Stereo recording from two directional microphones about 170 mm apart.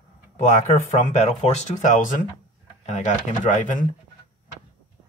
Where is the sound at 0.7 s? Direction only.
45° left (ahead or behind).